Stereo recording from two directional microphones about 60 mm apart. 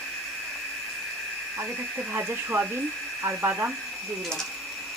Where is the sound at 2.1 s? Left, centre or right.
Right.